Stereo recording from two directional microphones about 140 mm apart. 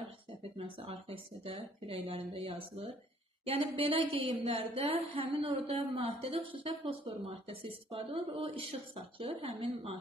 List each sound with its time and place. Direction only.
0.4 s a woman's voice: 45° right (ahead or behind)